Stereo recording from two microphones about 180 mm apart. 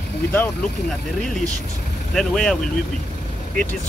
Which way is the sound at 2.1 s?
5° left (ahead or behind).